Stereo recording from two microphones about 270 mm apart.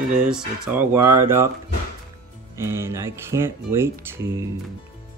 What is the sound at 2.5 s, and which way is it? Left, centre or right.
Speech, centre.